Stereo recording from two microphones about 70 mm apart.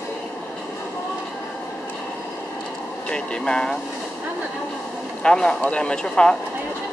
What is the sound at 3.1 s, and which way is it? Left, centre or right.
Speech, centre.